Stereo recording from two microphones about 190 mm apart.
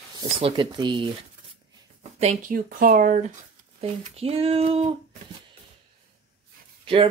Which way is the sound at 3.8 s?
30° right (ahead or behind).